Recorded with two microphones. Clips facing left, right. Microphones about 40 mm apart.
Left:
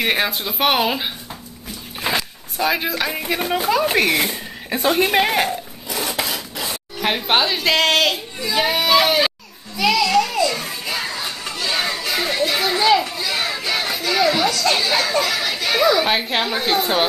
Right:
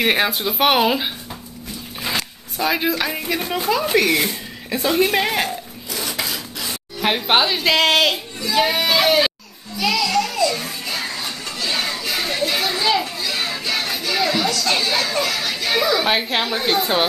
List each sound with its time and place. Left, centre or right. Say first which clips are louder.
0.0 s speech: right 2 dB; centre
2.0 s dog: left 3 dB; left
2.6 s speech: even; centre
4.9 s a woman's voice: even; left
5.2 s speech: left 2 dB; centre
6.1 s filing: left 2 dB; centre
7.0 s speech: right 1 dB; centre
10.0 s music: left 2 dB; centre
12.9 s children playing: left 3 dB; centre
13.7 s chatter: left 1 dB; centre
15.9 s speech: left 1 dB; centre